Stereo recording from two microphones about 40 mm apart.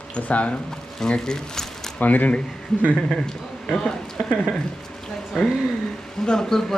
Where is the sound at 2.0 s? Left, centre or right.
Left.